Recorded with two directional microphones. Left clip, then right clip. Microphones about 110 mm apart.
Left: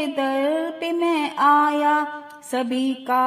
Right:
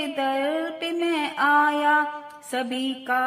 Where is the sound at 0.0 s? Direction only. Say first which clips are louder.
Left 3 dB; 30° left (ahead or behind).